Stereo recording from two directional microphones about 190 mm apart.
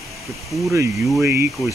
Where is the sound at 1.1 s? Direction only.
10° right (ahead or behind).